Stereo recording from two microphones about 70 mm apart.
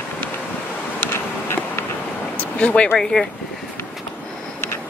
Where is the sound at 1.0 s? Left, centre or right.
Left.